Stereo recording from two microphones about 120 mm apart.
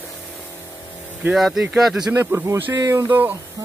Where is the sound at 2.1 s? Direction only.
20° right (ahead or behind).